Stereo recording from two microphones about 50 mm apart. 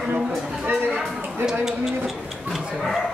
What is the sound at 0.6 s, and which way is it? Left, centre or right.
Speech, right.